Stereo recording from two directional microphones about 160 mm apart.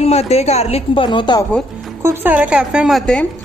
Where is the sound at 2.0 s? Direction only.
15° right (ahead or behind); by 3.2 s 5° left (ahead or behind).